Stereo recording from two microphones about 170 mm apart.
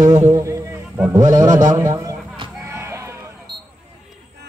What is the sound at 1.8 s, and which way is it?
Speech, 20° right (ahead or behind).